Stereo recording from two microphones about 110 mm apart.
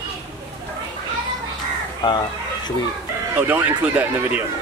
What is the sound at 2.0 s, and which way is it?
Speech, 40° left (ahead or behind).